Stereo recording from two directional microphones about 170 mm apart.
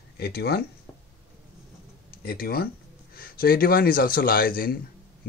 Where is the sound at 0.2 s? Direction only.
70° left (ahead or behind).